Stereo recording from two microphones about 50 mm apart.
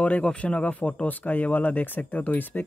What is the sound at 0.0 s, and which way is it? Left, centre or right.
Speech, left.